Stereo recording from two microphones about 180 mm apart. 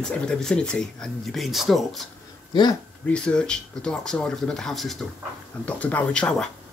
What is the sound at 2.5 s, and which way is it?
Speech, 25° left (ahead or behind).